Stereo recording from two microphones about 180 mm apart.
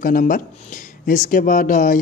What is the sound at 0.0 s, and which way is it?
Speech, 50° left (ahead or behind).